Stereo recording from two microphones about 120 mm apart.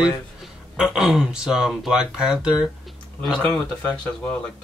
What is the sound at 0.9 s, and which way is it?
Speech, 5° right (ahead or behind).